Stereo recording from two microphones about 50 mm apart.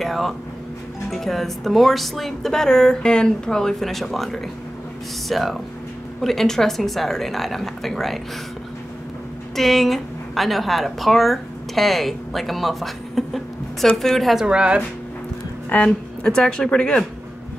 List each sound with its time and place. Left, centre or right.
0.0 s a sound: centre
1.1 s speech: centre
9.6 s a woman's voice: centre
14.3 s a woman's voice: centre
15.7 s a woman's voice: left